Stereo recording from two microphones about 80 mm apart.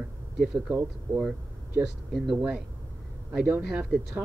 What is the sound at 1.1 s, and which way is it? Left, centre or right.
Speech, right.